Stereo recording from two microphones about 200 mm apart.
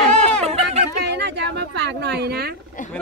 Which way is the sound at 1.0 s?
55° right (ahead or behind).